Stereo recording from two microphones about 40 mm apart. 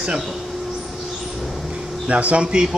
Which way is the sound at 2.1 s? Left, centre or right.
Right.